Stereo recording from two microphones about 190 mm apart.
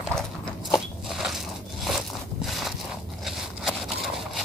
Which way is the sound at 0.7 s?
Centre (ahead or behind).